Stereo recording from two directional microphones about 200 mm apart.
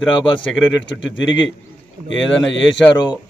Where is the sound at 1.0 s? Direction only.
65° left (ahead or behind).